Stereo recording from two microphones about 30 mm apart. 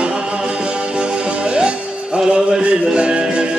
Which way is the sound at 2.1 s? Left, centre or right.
Right.